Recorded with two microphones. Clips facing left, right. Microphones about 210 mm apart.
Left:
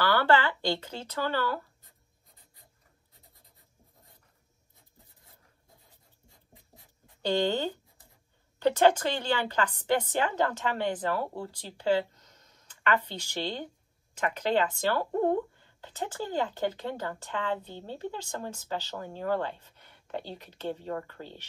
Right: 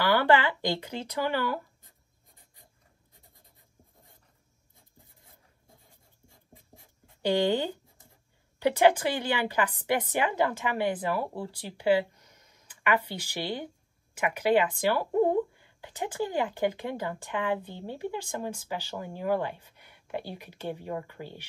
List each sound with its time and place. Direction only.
0.0 s speech: 15° right (ahead or behind)
6.5 s dog: 15° left (ahead or behind)
7.2 s speech: 10° right (ahead or behind)